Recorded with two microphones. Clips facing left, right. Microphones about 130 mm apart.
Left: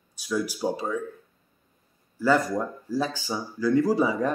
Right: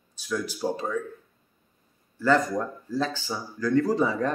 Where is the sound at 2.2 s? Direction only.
10° left (ahead or behind).